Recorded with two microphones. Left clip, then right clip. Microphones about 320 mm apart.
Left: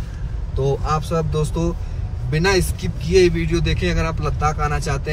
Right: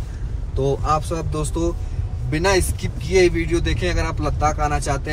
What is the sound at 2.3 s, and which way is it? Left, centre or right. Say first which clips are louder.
Speech: even; right.